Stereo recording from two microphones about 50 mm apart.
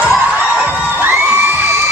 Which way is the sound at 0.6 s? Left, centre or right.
Right.